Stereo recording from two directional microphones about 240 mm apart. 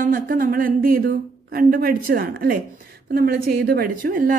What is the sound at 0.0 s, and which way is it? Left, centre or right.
A woman's voice, right.